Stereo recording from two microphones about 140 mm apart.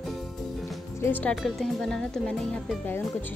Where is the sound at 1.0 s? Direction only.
15° left (ahead or behind).